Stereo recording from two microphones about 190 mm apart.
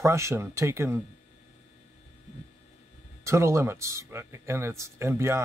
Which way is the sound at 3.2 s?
15° right (ahead or behind).